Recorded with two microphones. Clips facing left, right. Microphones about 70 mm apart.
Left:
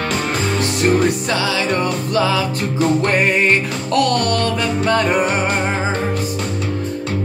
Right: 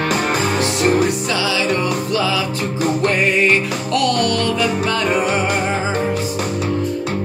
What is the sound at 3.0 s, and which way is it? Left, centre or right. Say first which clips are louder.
Music: even; left.